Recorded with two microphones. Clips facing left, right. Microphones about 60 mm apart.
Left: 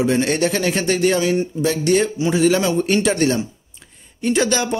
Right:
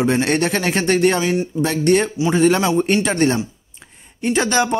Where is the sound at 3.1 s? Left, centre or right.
Right.